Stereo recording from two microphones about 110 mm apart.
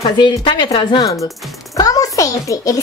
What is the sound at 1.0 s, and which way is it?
Speech, 30° left (ahead or behind).